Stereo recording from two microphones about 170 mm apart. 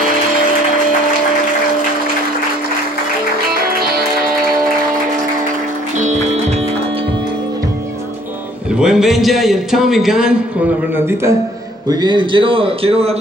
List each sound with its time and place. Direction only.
3.4 s music: 65° right (ahead or behind)
5.9 s music: 40° right (ahead or behind)
8.7 s a man's voice: 5° right (ahead or behind)
11.0 s a man's voice: 15° right (ahead or behind)
11.9 s a man's voice: 25° right (ahead or behind)